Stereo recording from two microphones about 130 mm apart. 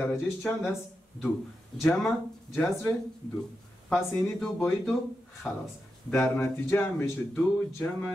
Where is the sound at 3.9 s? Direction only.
15° left (ahead or behind).